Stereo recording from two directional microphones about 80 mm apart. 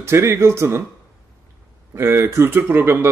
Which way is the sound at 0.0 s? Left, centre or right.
Right.